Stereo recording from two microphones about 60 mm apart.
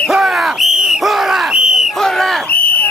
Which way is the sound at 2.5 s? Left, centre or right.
Left.